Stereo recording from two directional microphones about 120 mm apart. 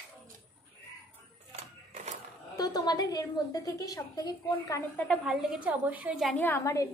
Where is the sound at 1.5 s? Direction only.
70° right (ahead or behind).